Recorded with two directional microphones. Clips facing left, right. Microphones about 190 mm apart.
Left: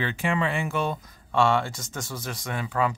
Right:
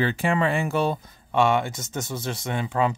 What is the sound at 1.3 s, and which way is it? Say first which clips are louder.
Speech: right 2 dB; 20° right (ahead or behind).